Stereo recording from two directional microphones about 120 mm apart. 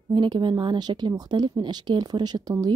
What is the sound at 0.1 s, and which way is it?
Speech, 40° right (ahead or behind).